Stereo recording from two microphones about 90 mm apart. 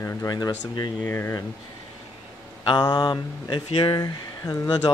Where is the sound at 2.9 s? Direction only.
55° left (ahead or behind).